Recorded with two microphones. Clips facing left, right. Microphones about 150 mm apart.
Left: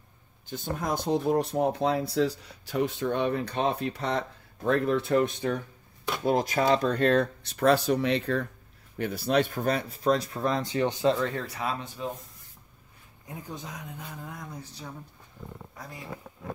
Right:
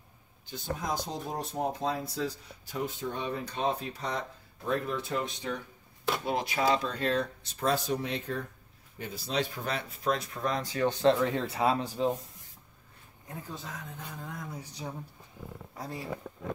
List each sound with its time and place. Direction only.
0.5 s speech: 55° left (ahead or behind); by 8.5 s 90° left
8.9 s speech: 65° left (ahead or behind); by 11.0 s 25° left (ahead or behind)
11.1 s speech: 15° right (ahead or behind)
11.4 s speech: 30° right (ahead or behind)
13.3 s speech: 15° left (ahead or behind); by 14.6 s centre (ahead or behind)
14.6 s speech: 15° right (ahead or behind)